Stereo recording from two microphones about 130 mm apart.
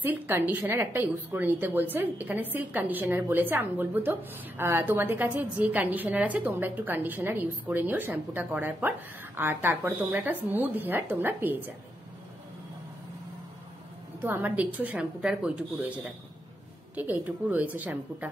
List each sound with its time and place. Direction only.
0.0 s a woman's voice: 15° right (ahead or behind)
14.2 s a woman's voice: 15° right (ahead or behind)